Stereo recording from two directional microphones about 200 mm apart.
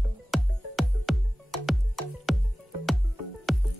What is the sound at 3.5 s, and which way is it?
Music, centre (ahead or behind).